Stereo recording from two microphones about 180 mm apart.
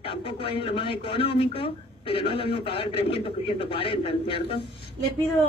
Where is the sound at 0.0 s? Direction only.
30° left (ahead or behind).